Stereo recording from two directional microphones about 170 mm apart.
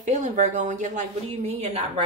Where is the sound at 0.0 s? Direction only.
45° right (ahead or behind).